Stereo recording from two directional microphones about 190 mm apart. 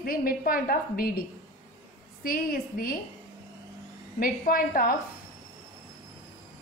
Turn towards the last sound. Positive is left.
turn(degrees=50)  # may be behind; listen again after turning